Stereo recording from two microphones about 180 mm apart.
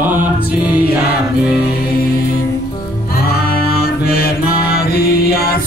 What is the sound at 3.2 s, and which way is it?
Music, 60° left (ahead or behind).